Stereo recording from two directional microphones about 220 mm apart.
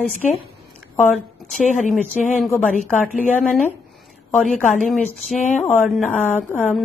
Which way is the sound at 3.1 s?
35° left (ahead or behind).